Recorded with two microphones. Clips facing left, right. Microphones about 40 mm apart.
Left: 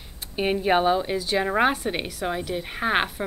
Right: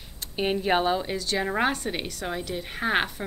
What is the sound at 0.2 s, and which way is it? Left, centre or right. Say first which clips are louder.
A woman's voice: left 2 dB; centre.